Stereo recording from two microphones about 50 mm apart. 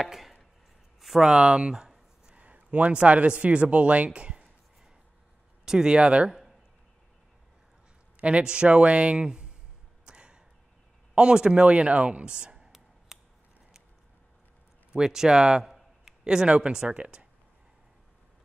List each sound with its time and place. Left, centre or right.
0.0 s chopping: centre
1.2 s a sound: centre
2.3 s speech: right
5.7 s speech: centre
8.2 s speech: right
10.0 s a sound: centre
11.1 s speech: centre
14.9 s speech: centre
15.6 s a sound: centre
16.3 s speech: centre